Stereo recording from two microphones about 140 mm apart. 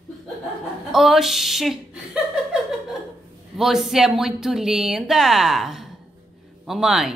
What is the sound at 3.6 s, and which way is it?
Speech, centre (ahead or behind).